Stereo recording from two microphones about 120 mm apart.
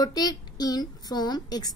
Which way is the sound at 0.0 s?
30° left (ahead or behind).